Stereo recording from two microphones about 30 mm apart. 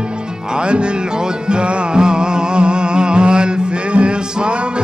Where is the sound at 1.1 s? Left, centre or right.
Right.